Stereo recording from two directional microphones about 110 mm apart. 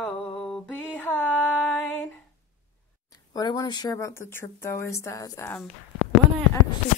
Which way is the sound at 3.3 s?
35° left (ahead or behind).